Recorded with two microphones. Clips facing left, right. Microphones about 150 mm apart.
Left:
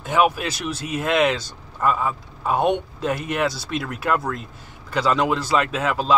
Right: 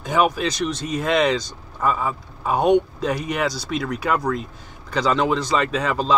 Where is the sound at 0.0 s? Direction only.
5° left (ahead or behind).